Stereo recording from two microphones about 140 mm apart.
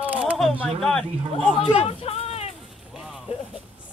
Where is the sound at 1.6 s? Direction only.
45° left (ahead or behind).